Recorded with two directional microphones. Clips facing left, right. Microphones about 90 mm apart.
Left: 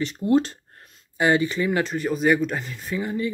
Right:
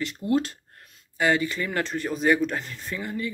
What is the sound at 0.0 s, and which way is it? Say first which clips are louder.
Speech: left 4 dB; 30° left (ahead or behind).